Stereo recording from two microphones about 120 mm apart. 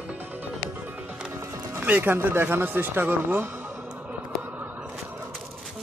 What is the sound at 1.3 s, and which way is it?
Speech, 15° right (ahead or behind).